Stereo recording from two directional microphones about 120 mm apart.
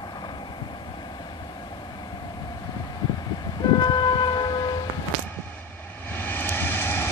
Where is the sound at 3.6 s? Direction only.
40° left (ahead or behind).